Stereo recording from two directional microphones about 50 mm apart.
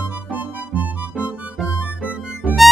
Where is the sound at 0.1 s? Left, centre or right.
Right.